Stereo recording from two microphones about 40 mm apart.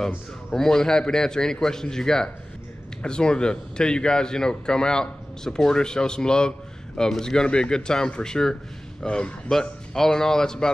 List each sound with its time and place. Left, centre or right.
0.6 s a man's voice: centre
9.5 s a man's voice: centre